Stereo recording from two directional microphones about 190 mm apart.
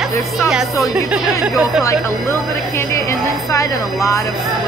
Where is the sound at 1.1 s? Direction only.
5° right (ahead or behind).